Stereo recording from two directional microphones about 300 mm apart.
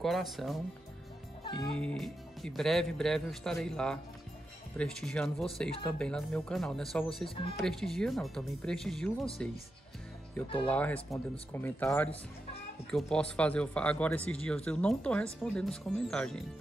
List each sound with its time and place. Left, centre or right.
0.0 s speech: centre
1.4 s music: centre
1.8 s speech: centre
7.2 s speech: centre
7.6 s speech: centre
10.7 s speech: centre